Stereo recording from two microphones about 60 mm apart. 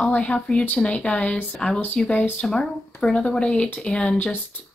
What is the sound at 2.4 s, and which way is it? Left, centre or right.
Speech, centre.